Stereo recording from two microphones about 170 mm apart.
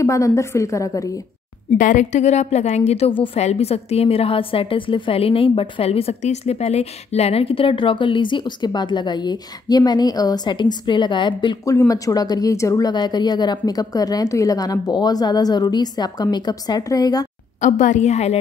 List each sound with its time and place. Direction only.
0.0 s speech: 20° left (ahead or behind)
1.8 s a woman's voice: 50° left (ahead or behind); by 17.3 s 20° left (ahead or behind)
17.6 s a woman's voice: 45° left (ahead or behind)